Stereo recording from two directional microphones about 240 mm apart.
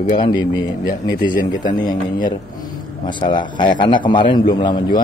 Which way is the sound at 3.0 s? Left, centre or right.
Centre.